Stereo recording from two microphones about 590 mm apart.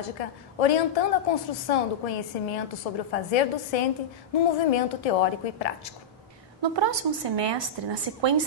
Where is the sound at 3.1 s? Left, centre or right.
Left.